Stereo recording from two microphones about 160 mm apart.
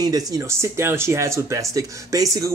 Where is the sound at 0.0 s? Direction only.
25° right (ahead or behind).